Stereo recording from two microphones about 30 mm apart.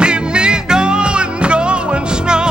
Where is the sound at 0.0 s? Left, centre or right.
Right.